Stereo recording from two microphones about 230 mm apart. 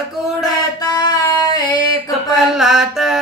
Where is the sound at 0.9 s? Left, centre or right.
Centre.